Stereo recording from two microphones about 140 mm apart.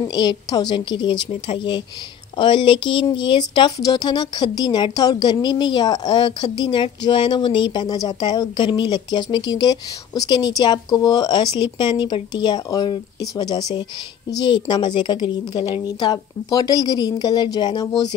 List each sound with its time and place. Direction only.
0.0 s a woman's voice: 30° left (ahead or behind)